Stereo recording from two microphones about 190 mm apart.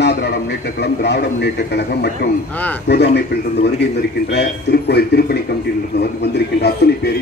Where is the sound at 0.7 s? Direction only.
60° left (ahead or behind).